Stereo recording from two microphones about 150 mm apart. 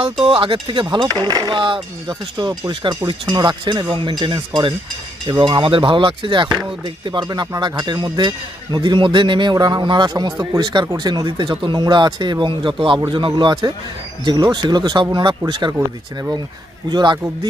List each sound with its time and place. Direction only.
0.0 s speech: 35° right (ahead or behind)
16.9 s speech: 30° right (ahead or behind)